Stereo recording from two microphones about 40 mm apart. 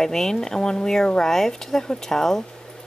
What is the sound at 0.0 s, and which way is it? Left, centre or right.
Speech, centre.